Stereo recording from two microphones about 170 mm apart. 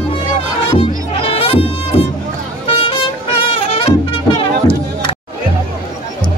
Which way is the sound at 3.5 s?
35° left (ahead or behind).